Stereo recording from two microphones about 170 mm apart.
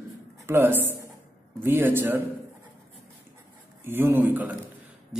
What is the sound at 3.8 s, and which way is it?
Speech, 15° right (ahead or behind).